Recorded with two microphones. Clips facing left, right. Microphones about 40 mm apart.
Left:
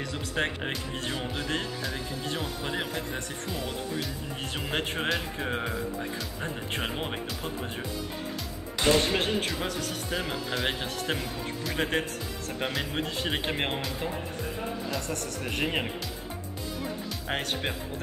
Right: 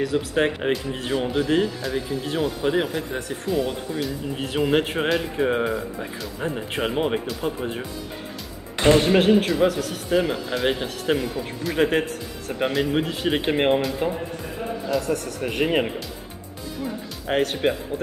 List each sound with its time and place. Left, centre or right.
0.0 s speech: centre
8.7 s music: right
9.0 s speech: centre
17.3 s speech: centre